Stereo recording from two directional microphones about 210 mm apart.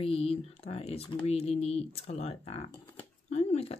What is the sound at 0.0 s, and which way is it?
Speech, 30° left (ahead or behind).